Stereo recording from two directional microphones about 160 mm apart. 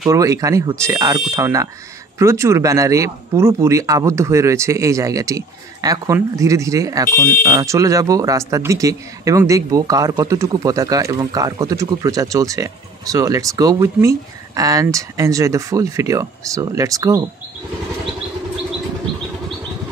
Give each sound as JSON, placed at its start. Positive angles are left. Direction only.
{"t": 0.1, "sound": "speech", "side_deg": -20}